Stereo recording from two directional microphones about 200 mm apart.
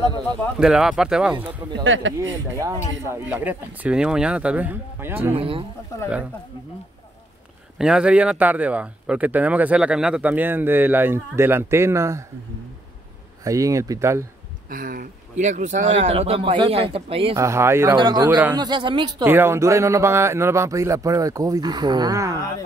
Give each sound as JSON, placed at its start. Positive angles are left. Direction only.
{"t": 0.6, "sound": "speech", "side_deg": 0}
{"t": 1.6, "sound": "speech", "side_deg": -15}
{"t": 5.3, "sound": "speech", "side_deg": -25}
{"t": 7.8, "sound": "speech", "side_deg": -5}
{"t": 13.4, "sound": "speech", "side_deg": -15}
{"t": 14.7, "sound": "speech", "side_deg": -45}
{"t": 17.4, "sound": "speech", "side_deg": -15}
{"t": 18.5, "sound": "speech", "side_deg": -20}
{"t": 19.2, "sound": "speech", "side_deg": -10}